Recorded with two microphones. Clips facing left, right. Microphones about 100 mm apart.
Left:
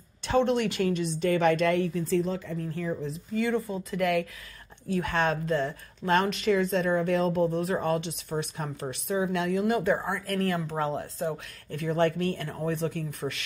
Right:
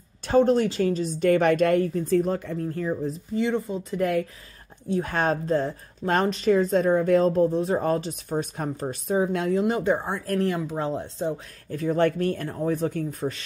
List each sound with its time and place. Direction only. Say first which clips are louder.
0.2 s speech: right 5 dB; 40° right (ahead or behind)
1.2 s a woman's voice: right 4 dB; 50° right (ahead or behind)
3.3 s speech: right 2 dB; 20° right (ahead or behind)
4.0 s speech: right 1 dB; 35° right (ahead or behind)
5.1 s speech: right 3 dB; 40° right (ahead or behind); by 11.3 s 25° right (ahead or behind)
11.7 s speech: right 3 dB; 40° right (ahead or behind)